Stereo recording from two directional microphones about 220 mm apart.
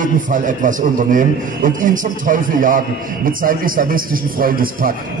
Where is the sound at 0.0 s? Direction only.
35° right (ahead or behind).